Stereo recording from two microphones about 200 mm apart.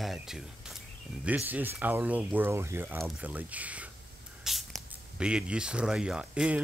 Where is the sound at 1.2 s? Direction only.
10° right (ahead or behind).